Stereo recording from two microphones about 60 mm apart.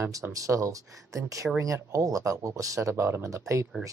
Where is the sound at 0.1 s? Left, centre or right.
Right.